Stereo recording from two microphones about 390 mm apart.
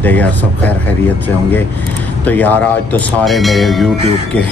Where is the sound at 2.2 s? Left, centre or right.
Centre.